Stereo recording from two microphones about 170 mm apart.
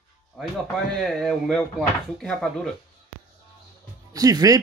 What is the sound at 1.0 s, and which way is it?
Speech, centre (ahead or behind).